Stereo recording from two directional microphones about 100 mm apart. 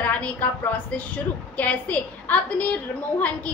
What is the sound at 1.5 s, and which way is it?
A woman's voice, 15° left (ahead or behind).